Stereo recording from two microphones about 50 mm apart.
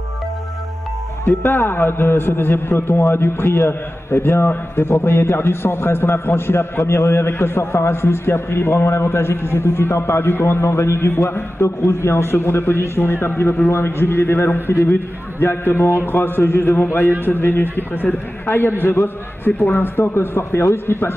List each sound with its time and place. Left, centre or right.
1.2 s a man's voice: left